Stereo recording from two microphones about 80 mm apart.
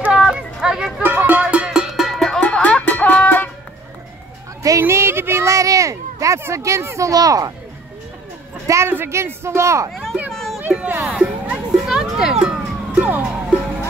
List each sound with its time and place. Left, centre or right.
0.0 s a sound: centre
1.0 s music: right; by 2.4 s centre
2.4 s music: centre
4.6 s a sound: right
6.4 s speech: right
8.6 s a woman's voice: right
10.3 s children playing: centre
10.7 s speech: centre
11.1 s music: centre
12.9 s music: right